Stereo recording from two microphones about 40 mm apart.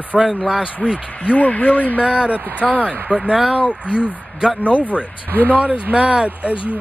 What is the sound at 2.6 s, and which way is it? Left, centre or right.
Speech, right.